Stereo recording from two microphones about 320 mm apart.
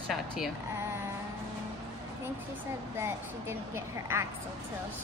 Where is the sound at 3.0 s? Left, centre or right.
Centre.